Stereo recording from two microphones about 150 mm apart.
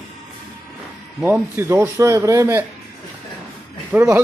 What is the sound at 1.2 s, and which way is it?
Speech, 15° right (ahead or behind).